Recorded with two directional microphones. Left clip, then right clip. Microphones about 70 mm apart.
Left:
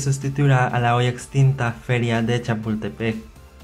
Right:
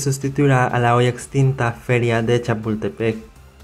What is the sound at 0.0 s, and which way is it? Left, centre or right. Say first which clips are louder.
Speech: right 5 dB; right.